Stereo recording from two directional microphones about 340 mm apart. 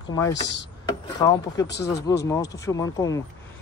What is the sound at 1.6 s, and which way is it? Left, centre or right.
Speech, left.